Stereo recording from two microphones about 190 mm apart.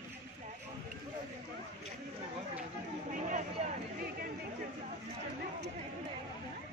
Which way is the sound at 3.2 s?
40° right (ahead or behind).